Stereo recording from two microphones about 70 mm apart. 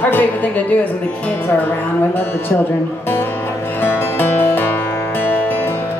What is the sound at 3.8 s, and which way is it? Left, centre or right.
Music, left.